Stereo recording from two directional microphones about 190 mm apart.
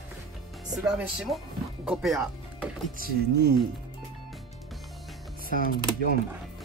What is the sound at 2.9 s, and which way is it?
Speech, 55° right (ahead or behind).